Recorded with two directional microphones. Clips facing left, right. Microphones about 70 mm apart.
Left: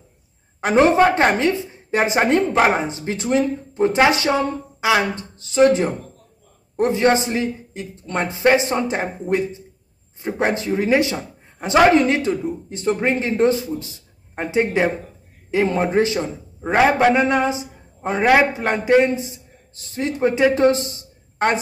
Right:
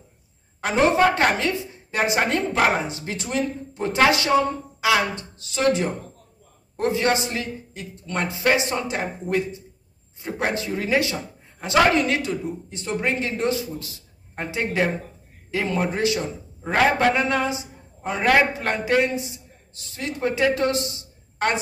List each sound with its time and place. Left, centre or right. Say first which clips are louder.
0.6 s a woman's voice: left 4 dB; left
18.2 s a man's voice: left 3 dB; centre